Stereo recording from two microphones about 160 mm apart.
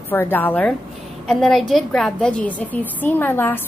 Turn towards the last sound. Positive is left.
turn(degrees=10)  # may be behind; listen again after turning